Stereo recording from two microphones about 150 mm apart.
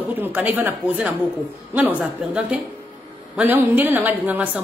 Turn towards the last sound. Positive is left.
turn(degrees=-10)  # may be behind; listen again after turning